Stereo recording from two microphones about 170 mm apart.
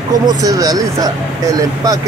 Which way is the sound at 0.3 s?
20° right (ahead or behind).